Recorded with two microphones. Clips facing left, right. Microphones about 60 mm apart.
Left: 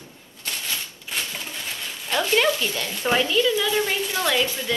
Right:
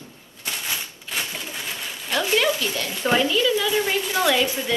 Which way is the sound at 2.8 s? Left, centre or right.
Centre.